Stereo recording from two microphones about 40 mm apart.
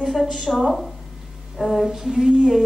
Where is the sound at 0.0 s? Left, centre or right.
Centre.